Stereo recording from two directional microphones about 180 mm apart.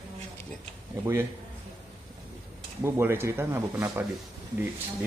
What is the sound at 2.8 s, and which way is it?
Speech, 15° right (ahead or behind).